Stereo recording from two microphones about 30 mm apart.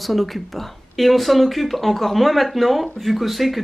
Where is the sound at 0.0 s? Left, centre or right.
Centre.